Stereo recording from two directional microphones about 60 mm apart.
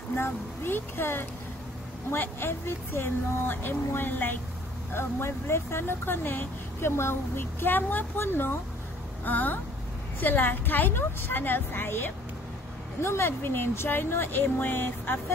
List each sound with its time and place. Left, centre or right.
0.1 s speech: left